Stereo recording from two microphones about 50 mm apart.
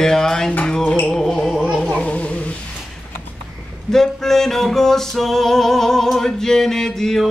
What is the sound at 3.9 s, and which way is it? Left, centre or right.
Music, centre.